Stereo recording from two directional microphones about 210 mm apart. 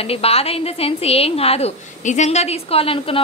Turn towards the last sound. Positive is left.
turn(degrees=25)  # may be behind; listen again after turning